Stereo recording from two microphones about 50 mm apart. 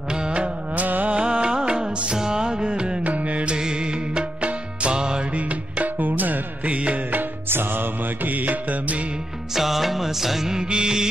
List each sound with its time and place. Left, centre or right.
0.1 s music: centre
0.8 s music: right
1.1 s music: right
3.0 s music: right
3.5 s music: centre
5.3 s music: right
9.6 s music: centre